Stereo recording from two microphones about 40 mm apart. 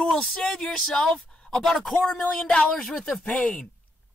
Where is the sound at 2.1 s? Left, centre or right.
Centre.